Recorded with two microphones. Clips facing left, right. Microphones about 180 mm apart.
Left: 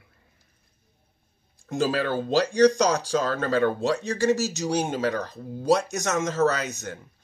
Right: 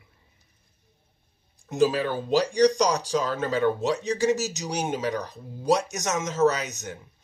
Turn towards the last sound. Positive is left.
turn(degrees=-20)  # may be behind; listen again after turning